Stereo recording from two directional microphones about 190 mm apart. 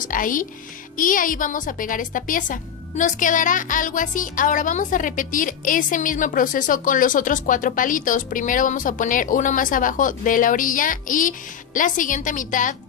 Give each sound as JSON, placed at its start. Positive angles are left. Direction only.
{"t": 0.0, "sound": "a woman's voice", "side_deg": 45}